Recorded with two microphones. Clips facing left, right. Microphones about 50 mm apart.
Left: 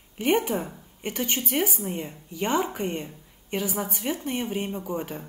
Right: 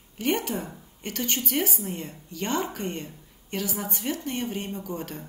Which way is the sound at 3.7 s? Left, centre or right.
Centre.